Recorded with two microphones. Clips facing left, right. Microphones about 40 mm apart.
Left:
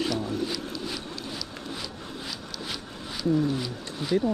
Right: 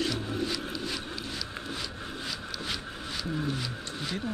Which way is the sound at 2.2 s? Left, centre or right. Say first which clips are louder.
Right 1 dB; centre.